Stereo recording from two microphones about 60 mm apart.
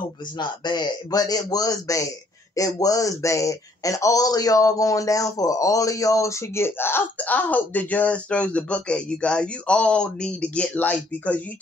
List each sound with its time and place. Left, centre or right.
0.8 s a man's voice: left
7.2 s speech: left